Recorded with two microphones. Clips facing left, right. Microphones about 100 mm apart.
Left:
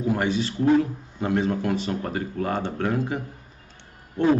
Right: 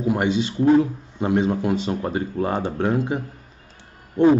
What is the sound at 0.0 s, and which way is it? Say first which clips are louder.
A man's voice: right 3 dB; 20° right (ahead or behind).